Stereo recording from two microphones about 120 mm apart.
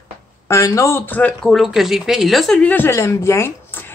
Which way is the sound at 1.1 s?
10° left (ahead or behind).